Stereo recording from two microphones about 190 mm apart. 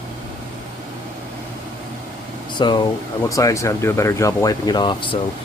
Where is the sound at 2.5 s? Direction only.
25° left (ahead or behind).